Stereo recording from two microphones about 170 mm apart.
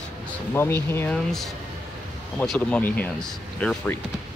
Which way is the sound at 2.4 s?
5° left (ahead or behind).